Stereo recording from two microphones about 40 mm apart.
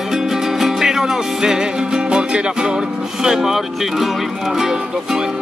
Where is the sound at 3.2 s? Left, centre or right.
Centre.